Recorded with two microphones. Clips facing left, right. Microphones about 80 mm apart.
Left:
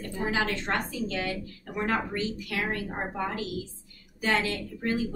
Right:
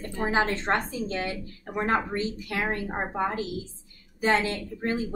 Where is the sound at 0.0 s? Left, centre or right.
Right.